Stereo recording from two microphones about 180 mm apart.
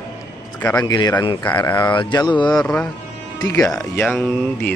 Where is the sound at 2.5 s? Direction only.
5° left (ahead or behind).